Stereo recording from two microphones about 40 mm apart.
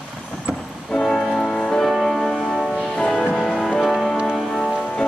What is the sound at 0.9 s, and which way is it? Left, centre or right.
Music, centre.